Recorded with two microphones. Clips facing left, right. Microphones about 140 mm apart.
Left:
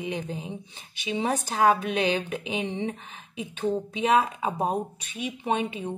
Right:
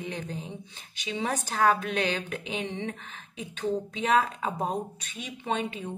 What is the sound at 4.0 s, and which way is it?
Speech, 15° left (ahead or behind).